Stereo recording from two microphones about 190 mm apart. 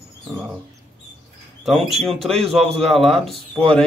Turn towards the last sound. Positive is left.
turn(degrees=0)  # may be behind; listen again after turning